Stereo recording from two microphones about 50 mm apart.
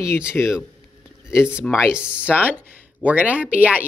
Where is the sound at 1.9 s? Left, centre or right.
Centre.